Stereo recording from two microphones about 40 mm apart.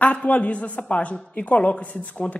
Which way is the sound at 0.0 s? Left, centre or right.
Left.